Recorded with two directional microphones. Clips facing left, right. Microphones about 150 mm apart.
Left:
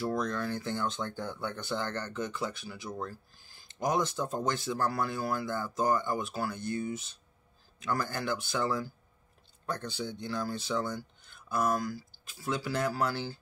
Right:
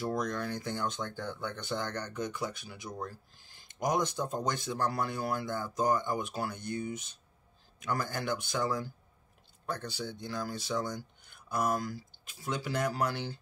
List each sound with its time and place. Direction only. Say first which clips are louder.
0.0 s speech: left 1 dB; 15° right (ahead or behind)